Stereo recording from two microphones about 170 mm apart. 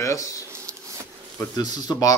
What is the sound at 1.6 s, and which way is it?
Speech, 25° left (ahead or behind).